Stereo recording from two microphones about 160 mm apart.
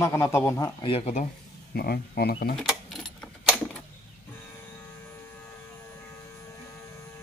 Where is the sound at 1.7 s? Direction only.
75° left (ahead or behind).